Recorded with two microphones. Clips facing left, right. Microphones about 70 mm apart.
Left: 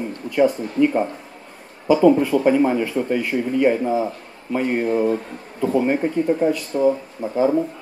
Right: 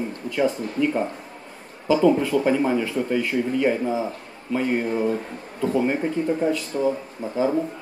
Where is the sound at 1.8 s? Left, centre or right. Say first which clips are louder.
Left 4 dB; centre.